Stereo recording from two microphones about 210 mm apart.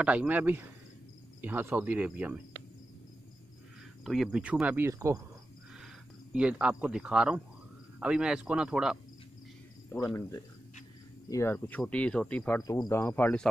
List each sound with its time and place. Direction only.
0.0 s speech: 5° right (ahead or behind)
4.0 s speech: centre (ahead or behind)
6.3 s speech: 5° right (ahead or behind)
10.0 s speech: 15° left (ahead or behind)
12.6 s speech: 20° left (ahead or behind)